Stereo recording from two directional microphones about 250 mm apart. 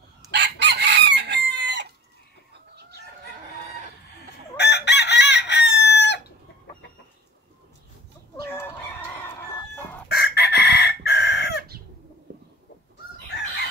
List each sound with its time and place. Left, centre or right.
0.3 s chicken: right
4.6 s chicken: left
8.5 s chicken: centre
10.0 s chicken: left